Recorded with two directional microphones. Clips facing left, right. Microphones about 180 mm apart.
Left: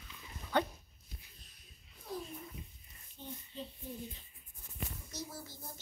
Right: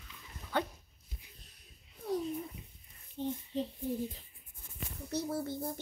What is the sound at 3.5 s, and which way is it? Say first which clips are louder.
Speech: right 10 dB; 80° right.